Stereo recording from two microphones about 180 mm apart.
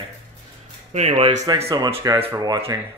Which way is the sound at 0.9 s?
35° right (ahead or behind).